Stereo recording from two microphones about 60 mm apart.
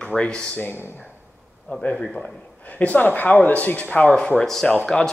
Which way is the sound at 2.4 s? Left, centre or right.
Left.